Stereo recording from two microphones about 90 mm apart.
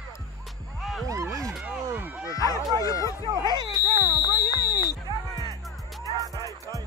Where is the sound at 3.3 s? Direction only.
50° right (ahead or behind).